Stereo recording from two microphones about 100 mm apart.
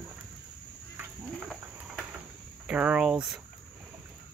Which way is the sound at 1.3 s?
10° left (ahead or behind).